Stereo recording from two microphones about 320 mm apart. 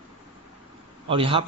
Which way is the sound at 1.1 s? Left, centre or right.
Centre.